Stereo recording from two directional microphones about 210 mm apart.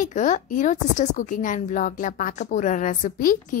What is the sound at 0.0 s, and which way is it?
A woman's voice, 35° left (ahead or behind).